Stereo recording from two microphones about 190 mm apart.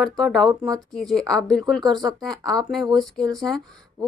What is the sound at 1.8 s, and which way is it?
Speech, 20° right (ahead or behind).